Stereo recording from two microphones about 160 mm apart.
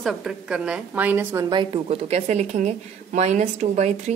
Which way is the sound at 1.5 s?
35° right (ahead or behind).